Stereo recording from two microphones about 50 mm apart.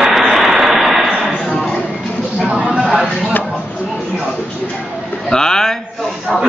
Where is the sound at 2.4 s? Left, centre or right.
Centre.